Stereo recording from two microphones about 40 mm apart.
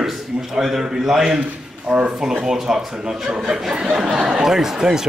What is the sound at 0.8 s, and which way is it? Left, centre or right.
Speech, centre.